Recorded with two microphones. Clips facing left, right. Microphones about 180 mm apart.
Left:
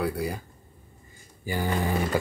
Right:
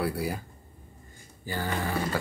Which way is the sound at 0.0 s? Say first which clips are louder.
Left 1 dB; 5° right (ahead or behind).